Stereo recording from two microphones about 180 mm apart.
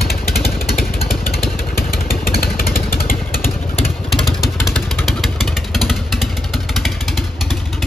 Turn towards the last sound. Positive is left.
turn(degrees=0)  # may be behind; listen again after turning